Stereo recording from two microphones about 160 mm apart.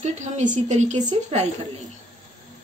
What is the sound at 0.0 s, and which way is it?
Speech, 50° right (ahead or behind).